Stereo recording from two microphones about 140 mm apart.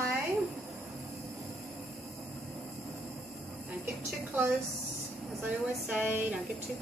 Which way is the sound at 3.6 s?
10° right (ahead or behind).